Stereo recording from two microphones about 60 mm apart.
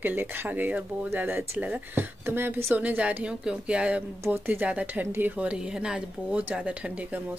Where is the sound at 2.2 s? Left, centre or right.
Right.